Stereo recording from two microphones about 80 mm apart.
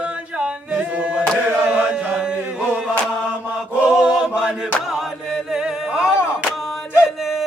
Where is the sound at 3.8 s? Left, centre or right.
Centre.